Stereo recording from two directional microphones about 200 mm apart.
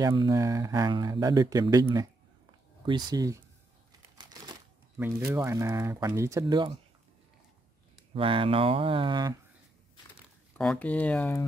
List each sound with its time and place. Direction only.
0.0 s speech: 20° right (ahead or behind)
4.2 s crumpling: 20° right (ahead or behind)
4.9 s speech: 10° right (ahead or behind)
8.1 s speech: 25° right (ahead or behind)
10.6 s speech: 5° left (ahead or behind)